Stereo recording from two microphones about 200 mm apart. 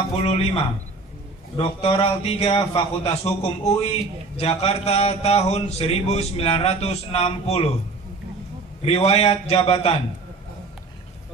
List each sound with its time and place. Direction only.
0.2 s a man's voice: 30° left (ahead or behind)
8.8 s a man's voice: 30° left (ahead or behind)